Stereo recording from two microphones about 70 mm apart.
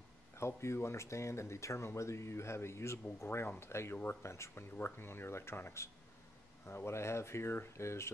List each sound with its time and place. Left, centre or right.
0.4 s speech: left